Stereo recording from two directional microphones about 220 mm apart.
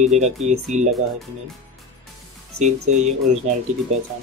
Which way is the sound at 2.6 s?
30° right (ahead or behind).